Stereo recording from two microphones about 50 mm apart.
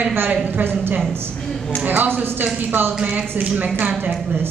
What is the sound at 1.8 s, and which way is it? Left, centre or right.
Speech, right.